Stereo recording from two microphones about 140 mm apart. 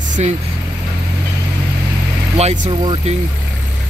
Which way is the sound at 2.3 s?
50° right (ahead or behind).